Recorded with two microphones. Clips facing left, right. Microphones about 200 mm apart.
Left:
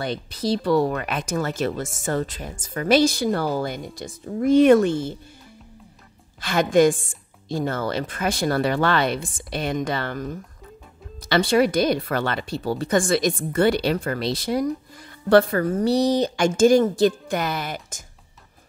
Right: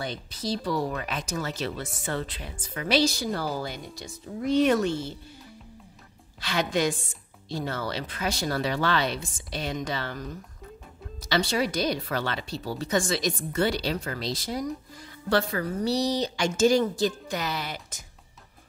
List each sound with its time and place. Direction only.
0.0 s speech: 65° left (ahead or behind)
6.4 s speech: 50° left (ahead or behind)
15.2 s speech: 55° left (ahead or behind)